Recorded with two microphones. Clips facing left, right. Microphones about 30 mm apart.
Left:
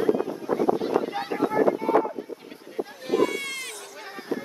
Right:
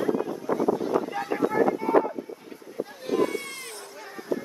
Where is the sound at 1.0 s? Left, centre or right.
Left.